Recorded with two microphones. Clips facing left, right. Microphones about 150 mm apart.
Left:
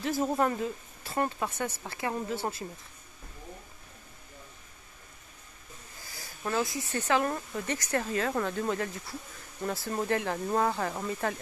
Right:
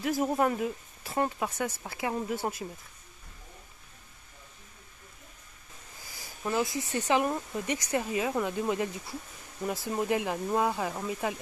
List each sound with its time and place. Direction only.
0.0 s speech: 10° right (ahead or behind)
6.4 s speech: 15° right (ahead or behind)